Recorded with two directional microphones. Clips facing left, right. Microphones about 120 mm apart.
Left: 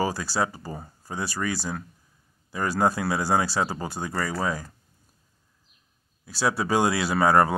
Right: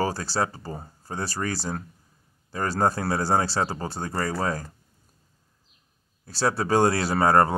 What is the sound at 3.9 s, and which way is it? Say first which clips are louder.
Speech: right 1 dB; 30° right (ahead or behind).